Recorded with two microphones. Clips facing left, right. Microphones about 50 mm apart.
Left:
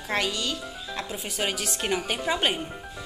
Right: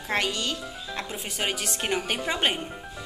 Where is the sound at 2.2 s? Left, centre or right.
Right.